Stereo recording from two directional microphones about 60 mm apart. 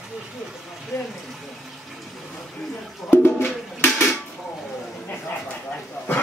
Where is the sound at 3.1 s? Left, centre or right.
Left.